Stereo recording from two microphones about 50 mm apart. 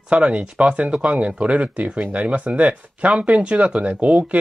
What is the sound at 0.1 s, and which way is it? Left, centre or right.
Speech, right.